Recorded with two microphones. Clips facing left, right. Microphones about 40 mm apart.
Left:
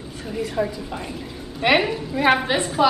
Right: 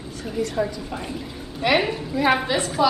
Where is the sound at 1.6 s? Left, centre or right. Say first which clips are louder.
Left 2 dB; left.